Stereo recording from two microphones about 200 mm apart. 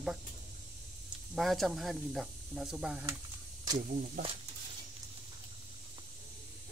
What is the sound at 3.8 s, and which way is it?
Speech, 45° right (ahead or behind).